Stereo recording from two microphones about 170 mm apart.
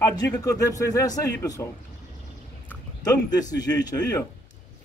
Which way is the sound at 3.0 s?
20° left (ahead or behind).